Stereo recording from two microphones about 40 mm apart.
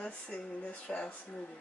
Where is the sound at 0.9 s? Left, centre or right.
Centre.